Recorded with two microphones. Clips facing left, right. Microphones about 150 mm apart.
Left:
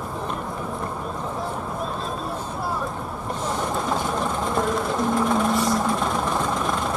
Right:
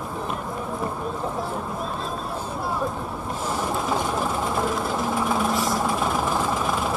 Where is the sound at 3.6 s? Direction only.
5° right (ahead or behind).